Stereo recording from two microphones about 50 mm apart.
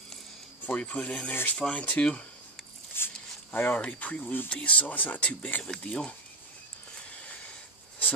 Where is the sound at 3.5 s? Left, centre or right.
Left.